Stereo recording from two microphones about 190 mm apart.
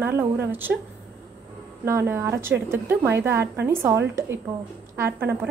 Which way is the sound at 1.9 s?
15° right (ahead or behind).